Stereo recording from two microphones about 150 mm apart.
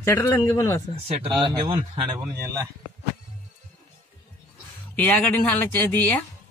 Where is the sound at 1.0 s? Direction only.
35° right (ahead or behind).